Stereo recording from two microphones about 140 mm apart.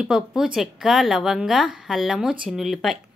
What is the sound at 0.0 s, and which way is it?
A woman's voice, 5° right (ahead or behind).